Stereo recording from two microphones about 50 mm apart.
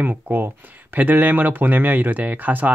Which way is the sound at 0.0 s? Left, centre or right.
Right.